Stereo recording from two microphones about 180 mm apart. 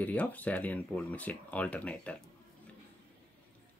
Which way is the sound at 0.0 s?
10° left (ahead or behind).